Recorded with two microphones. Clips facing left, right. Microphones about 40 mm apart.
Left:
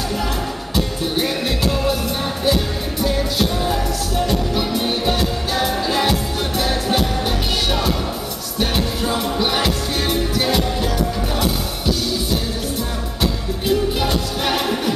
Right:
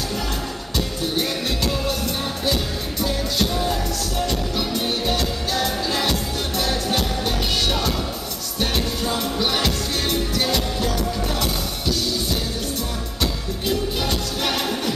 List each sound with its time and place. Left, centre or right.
0.7 s music: centre
13.2 s music: centre